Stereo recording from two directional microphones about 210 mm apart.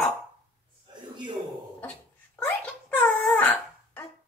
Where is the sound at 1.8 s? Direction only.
5° left (ahead or behind).